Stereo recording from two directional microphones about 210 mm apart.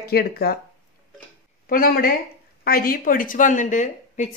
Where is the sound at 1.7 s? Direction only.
45° left (ahead or behind).